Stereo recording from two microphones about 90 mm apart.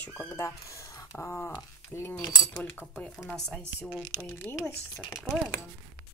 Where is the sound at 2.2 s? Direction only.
45° left (ahead or behind).